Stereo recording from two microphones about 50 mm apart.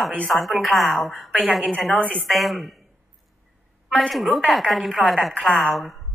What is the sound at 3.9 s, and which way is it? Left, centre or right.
A woman's voice, centre.